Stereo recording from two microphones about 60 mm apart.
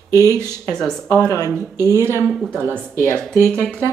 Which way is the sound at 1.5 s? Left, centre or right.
Right.